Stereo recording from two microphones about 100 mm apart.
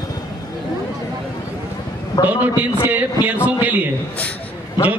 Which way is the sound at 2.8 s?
15° right (ahead or behind).